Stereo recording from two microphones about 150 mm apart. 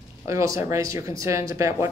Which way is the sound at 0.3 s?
20° right (ahead or behind).